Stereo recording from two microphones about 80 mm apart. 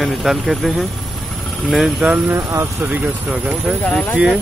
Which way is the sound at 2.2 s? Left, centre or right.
Right.